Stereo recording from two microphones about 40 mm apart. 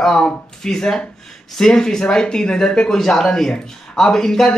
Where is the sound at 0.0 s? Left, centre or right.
Centre.